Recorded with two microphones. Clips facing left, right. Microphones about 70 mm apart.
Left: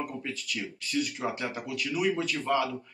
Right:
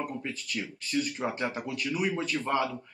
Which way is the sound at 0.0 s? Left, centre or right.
Right.